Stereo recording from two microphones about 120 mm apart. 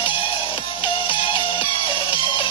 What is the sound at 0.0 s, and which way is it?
Music, 45° left (ahead or behind).